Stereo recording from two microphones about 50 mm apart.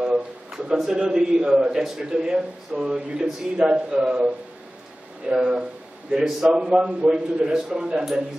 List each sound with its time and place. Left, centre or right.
0.0 s a sound: centre
0.7 s a man's voice: centre
5.3 s speech: centre
6.1 s a man's voice: centre
6.6 s a man's voice: centre